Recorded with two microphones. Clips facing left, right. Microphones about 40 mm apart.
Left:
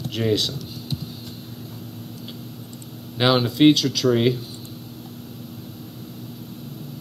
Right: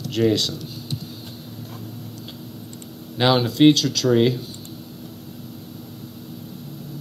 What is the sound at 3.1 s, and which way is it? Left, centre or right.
Speech, centre.